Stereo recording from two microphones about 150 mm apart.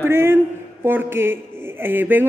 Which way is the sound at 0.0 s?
15° right (ahead or behind).